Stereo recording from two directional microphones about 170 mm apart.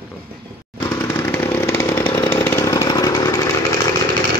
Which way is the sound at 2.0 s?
30° left (ahead or behind).